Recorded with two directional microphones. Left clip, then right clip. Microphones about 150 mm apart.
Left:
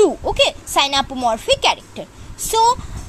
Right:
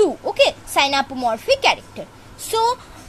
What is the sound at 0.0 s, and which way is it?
A woman's voice, 20° left (ahead or behind).